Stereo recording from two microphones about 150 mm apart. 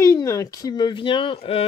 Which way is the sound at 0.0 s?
20° left (ahead or behind).